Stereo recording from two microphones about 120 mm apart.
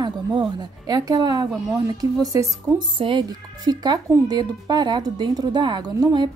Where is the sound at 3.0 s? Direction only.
40° right (ahead or behind).